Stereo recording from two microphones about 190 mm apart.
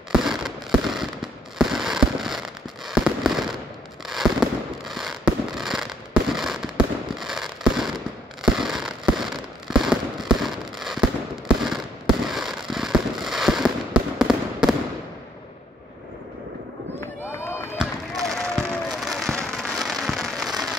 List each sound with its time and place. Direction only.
0.1 s fireworks: centre (ahead or behind)
17.0 s run: 15° left (ahead or behind)
17.7 s fireworks: 5° left (ahead or behind)